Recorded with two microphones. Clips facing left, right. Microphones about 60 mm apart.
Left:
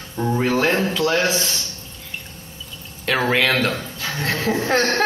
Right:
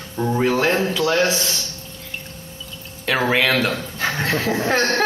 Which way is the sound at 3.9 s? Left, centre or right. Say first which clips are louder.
Right 5 dB; right.